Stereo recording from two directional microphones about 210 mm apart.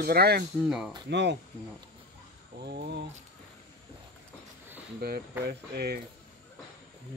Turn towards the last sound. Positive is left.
turn(degrees=-50)  # may be behind; listen again after turning